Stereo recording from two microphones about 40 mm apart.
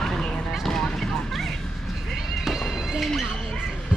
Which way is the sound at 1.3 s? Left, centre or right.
Centre.